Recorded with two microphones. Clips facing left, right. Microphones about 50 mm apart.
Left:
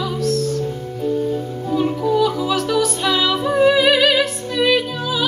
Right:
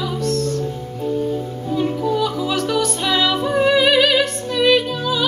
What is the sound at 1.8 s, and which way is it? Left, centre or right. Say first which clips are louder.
Music: left 2 dB; centre.